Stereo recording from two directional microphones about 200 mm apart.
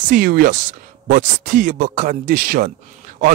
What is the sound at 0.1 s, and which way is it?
Speech, 45° right (ahead or behind).